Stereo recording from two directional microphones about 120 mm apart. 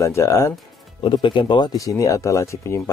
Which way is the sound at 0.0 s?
25° left (ahead or behind).